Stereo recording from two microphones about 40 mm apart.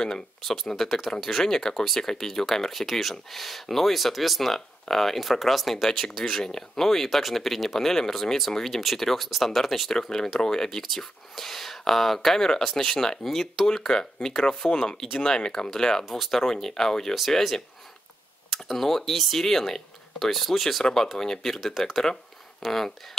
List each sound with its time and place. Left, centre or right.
1.2 s speech: centre
6.2 s speech: centre
10.8 s speech: centre
13.2 s speech: centre
13.7 s speech: centre